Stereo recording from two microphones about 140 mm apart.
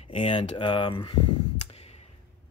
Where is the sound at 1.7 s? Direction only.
45° left (ahead or behind).